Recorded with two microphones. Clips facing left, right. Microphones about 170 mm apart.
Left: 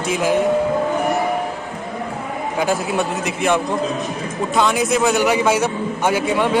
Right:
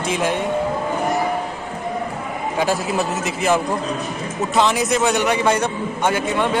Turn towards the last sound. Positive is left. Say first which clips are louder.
# left 2 dB
turn(degrees=10)  # may be behind; listen again after turning